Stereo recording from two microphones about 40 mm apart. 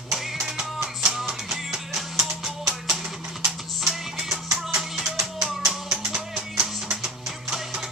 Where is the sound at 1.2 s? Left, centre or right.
Centre.